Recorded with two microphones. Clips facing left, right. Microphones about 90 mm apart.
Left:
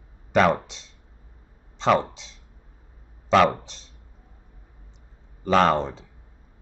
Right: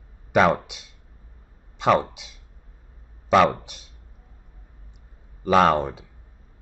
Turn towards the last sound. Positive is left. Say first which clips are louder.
# right 1 dB
turn(degrees=-10)  # may be behind; listen again after turning